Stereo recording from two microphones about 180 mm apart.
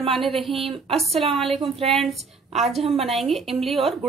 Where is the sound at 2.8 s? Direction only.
35° right (ahead or behind).